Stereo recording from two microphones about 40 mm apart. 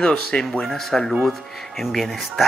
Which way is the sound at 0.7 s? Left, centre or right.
Centre.